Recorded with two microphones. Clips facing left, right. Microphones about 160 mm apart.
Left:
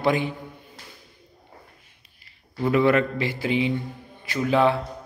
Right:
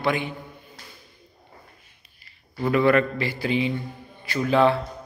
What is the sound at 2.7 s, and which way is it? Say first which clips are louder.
A man's voice: right 1 dB; 20° left (ahead or behind).